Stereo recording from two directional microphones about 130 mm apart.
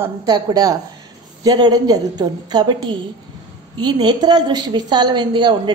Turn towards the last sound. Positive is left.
turn(degrees=-35)  # may be behind; listen again after turning